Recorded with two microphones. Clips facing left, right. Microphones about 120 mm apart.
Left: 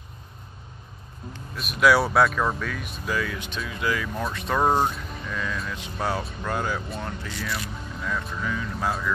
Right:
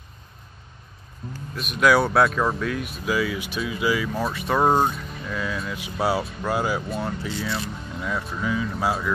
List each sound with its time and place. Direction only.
1.3 s speech: centre (ahead or behind)
7.2 s speech: 25° right (ahead or behind)
8.0 s speech: 5° right (ahead or behind)